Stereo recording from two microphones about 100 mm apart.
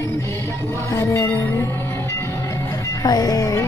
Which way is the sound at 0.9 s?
25° left (ahead or behind).